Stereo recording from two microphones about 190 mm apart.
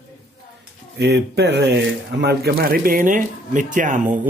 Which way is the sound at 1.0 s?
65° right (ahead or behind).